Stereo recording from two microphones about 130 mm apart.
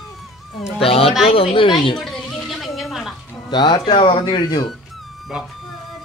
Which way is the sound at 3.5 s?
35° left (ahead or behind).